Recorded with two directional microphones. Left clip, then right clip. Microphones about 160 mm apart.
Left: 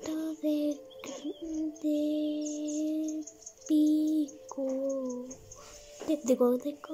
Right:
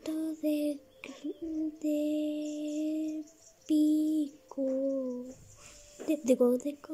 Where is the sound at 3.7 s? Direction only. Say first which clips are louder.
Left 1 dB; 10° right (ahead or behind).